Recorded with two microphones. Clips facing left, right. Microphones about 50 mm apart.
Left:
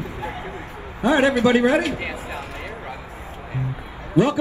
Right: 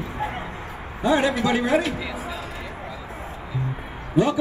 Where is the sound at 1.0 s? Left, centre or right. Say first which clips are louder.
Left 3 dB; left.